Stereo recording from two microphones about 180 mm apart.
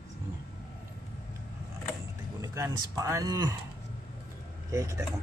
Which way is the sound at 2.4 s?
15° right (ahead or behind).